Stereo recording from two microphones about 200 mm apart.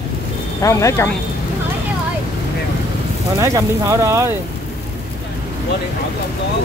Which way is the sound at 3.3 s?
15° right (ahead or behind).